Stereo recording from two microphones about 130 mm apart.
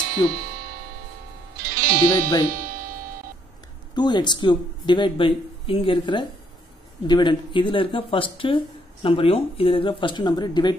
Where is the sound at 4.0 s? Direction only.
35° left (ahead or behind).